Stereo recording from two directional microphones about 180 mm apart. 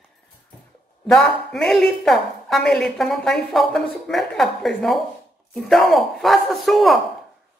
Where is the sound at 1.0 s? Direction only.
Centre (ahead or behind).